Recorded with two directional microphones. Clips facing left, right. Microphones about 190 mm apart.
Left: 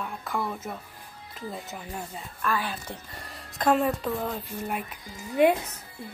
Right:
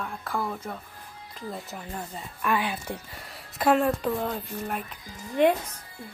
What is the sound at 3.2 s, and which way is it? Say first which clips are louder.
A woman's voice: right 1 dB; 5° right (ahead or behind).